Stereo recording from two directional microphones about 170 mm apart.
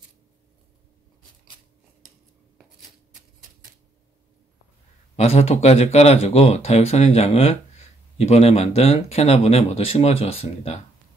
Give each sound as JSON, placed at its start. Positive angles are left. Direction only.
{"t": 5.1, "sound": "speech", "side_deg": 35}